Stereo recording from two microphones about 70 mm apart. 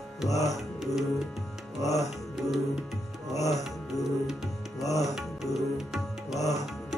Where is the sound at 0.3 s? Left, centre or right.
Left.